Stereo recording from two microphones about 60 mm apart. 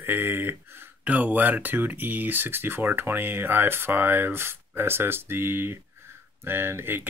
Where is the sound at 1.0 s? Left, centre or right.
Right.